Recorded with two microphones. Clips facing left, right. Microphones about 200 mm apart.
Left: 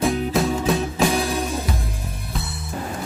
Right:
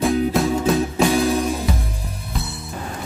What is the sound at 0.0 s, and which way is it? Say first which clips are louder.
Music: right 2 dB; centre (ahead or behind).